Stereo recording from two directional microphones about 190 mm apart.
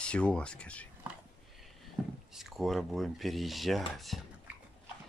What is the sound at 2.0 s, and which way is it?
Boat, 5° right (ahead or behind).